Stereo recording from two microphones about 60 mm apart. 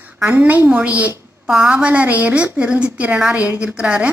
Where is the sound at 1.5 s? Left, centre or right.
Centre.